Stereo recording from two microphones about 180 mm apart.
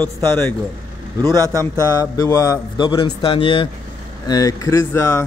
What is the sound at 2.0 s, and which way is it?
A man's voice, 20° left (ahead or behind).